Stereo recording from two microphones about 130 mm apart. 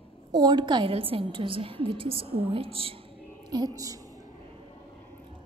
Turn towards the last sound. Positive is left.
turn(degrees=-25)  # may be behind; listen again after turning